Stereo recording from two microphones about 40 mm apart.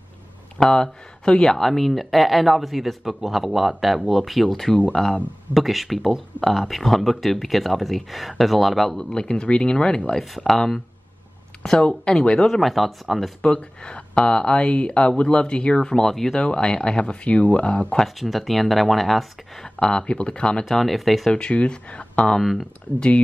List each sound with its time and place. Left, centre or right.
0.6 s speech: centre
8.9 s speech: centre
10.3 s speech: centre
11.8 s speech: left
12.4 s speech: centre
13.4 s speech: left
16.3 s speech: left
17.9 s speech: centre
19.6 s speech: centre
20.6 s speech: centre
21.3 s speech: left
22.4 s speech: centre
22.9 s speech: left